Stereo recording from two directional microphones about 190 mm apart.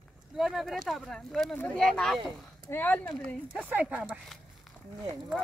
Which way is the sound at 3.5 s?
10° right (ahead or behind).